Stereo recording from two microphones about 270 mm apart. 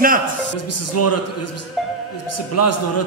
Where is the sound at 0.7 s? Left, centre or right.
Left.